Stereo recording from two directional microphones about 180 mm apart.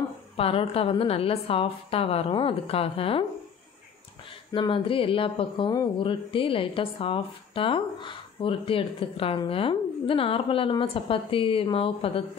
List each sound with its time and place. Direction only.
0.4 s a woman's voice: 30° left (ahead or behind)
4.5 s speech: 30° left (ahead or behind)